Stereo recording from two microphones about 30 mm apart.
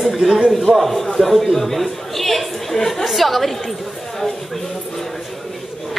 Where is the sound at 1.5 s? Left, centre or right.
Centre.